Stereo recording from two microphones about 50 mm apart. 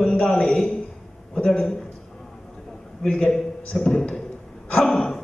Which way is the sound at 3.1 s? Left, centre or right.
Centre.